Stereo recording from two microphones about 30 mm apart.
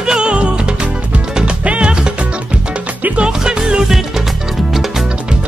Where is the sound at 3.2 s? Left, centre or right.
Right.